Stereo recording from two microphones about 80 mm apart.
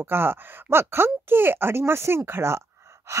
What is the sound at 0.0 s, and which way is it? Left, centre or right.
Speech, right.